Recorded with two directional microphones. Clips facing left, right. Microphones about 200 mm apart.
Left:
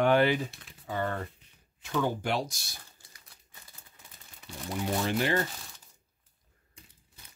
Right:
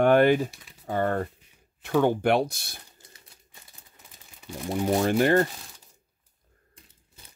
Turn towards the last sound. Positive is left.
turn(degrees=-50)  # may be behind; listen again after turning